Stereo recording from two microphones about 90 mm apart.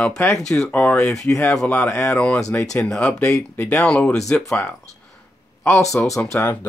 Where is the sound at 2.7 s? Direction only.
10° left (ahead or behind).